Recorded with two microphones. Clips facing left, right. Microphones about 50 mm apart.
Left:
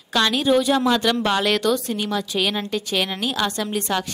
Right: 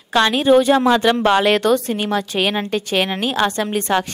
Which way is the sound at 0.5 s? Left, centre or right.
Right.